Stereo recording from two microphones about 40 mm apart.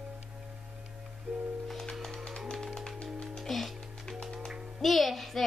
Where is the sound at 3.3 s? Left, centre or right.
Centre.